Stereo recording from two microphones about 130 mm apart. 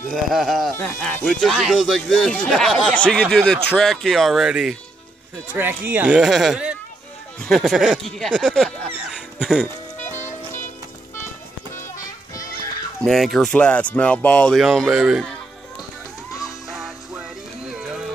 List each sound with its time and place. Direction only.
0.1 s speech: centre (ahead or behind)
0.7 s speech: 15° left (ahead or behind); by 4.7 s 5° right (ahead or behind)
5.5 s speech: 15° right (ahead or behind)
8.0 s speech: 5° left (ahead or behind)
10.1 s music: 70° left (ahead or behind)
13.0 s speech: centre (ahead or behind)
14.6 s speech: 5° right (ahead or behind)
16.7 s music: 5° right (ahead or behind)